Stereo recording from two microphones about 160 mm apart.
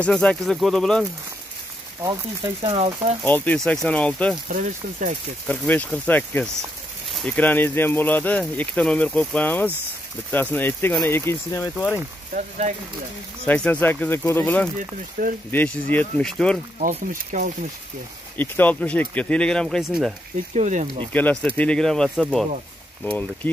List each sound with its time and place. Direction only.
0.0 s speech: 5° left (ahead or behind)
2.0 s speech: 25° right (ahead or behind)
2.6 s speech: 35° right (ahead or behind)
3.3 s speech: 10° left (ahead or behind)
4.5 s speech: 55° right (ahead or behind)
5.5 s speech: 10° left (ahead or behind)
12.4 s speech: 50° right (ahead or behind)
13.5 s speech: 10° left (ahead or behind)
14.8 s speech: 60° right (ahead or behind)
15.5 s speech: 10° left (ahead or behind)
16.8 s speech: 55° right (ahead or behind)
18.4 s speech: 10° left (ahead or behind)
20.5 s speech: 50° right (ahead or behind)
21.1 s speech: 10° left (ahead or behind)